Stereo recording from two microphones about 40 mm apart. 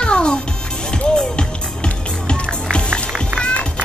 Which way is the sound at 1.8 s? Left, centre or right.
Left.